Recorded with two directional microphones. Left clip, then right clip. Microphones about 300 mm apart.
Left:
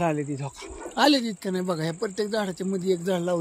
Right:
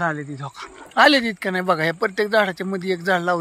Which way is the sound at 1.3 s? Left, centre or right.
Right.